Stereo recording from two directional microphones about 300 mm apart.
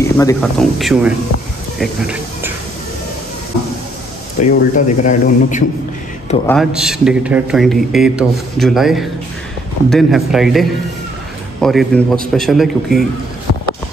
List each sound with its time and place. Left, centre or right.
0.0 s a man's voice: centre
1.8 s a sound: centre
4.4 s speech: left
6.4 s a man's voice: centre